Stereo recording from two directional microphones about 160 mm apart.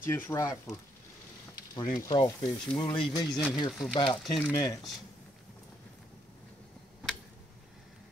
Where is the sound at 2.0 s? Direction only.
25° left (ahead or behind).